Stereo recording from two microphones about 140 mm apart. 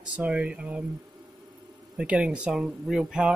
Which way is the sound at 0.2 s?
10° right (ahead or behind).